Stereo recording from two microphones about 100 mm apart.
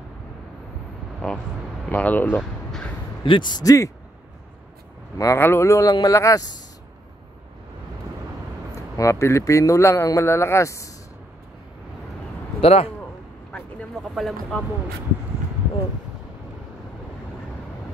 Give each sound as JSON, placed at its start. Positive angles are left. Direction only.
{"t": 1.2, "sound": "speech", "side_deg": 5}
{"t": 1.9, "sound": "speech", "side_deg": 15}
{"t": 3.3, "sound": "speech", "side_deg": 50}
{"t": 5.1, "sound": "speech", "side_deg": 30}
{"t": 8.9, "sound": "speech", "side_deg": 30}
{"t": 12.5, "sound": "speech", "side_deg": 75}
{"t": 14.0, "sound": "speech", "side_deg": 0}